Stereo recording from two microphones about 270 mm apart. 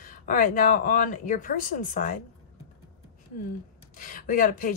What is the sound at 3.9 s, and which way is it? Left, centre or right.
Speech, left.